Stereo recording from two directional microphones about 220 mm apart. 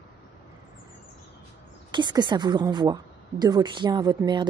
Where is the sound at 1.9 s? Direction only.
20° right (ahead or behind).